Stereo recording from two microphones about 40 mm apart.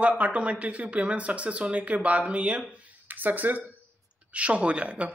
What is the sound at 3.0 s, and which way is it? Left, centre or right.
Speech, right.